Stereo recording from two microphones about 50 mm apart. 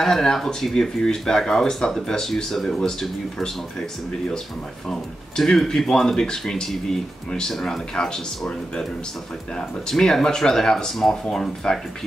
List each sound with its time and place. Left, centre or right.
0.0 s speech: centre
5.3 s speech: centre
9.6 s speech: centre